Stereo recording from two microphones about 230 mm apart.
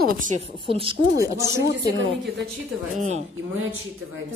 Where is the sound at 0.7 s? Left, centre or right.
Right.